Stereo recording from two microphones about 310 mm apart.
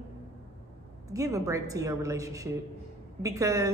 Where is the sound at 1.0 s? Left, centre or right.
Centre.